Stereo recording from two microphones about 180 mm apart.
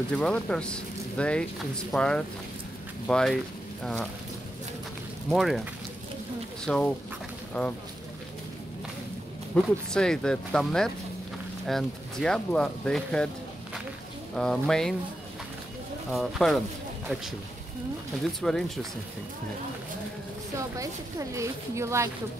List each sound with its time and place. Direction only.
0.1 s speech: 5° left (ahead or behind)
5.3 s speech: centre (ahead or behind)
6.6 s speech: 5° left (ahead or behind)
9.5 s speech: 5° left (ahead or behind)
14.3 s speech: 5° left (ahead or behind)
16.1 s speech: centre (ahead or behind)
18.4 s speech: centre (ahead or behind)
20.7 s speech: 20° right (ahead or behind)